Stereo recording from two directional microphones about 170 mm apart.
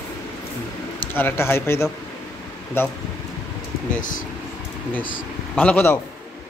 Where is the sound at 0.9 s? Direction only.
10° left (ahead or behind).